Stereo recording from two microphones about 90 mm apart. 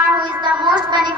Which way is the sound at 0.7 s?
55° right (ahead or behind).